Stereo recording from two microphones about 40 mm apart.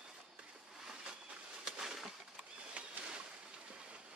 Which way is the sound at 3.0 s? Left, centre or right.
Right.